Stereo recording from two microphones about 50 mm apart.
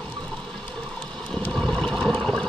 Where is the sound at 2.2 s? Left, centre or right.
Centre.